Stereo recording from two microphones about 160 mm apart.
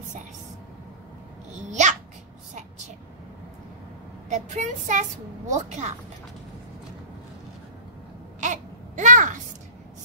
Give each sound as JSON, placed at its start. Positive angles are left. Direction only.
{"t": 1.6, "sound": "babbling", "side_deg": -50}
{"t": 4.3, "sound": "a woman's voice", "side_deg": -45}
{"t": 8.4, "sound": "a sound", "side_deg": -50}